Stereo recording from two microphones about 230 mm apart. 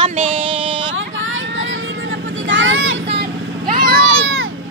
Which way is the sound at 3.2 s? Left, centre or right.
Right.